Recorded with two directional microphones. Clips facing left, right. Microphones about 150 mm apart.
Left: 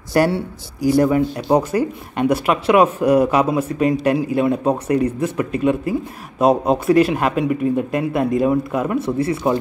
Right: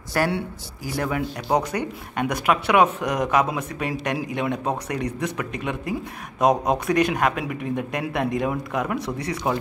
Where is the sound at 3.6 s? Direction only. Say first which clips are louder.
Left 10 dB; 35° left (ahead or behind).